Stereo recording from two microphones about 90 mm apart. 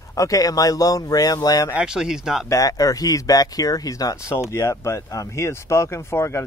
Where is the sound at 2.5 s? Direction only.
40° left (ahead or behind).